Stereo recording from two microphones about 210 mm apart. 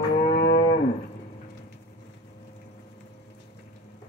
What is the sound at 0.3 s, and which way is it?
Moo, 50° left (ahead or behind).